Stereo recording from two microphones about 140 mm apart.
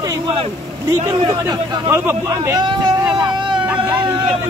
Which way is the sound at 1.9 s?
20° right (ahead or behind).